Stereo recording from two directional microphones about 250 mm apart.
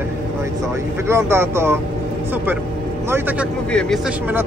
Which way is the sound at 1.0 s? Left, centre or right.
Centre.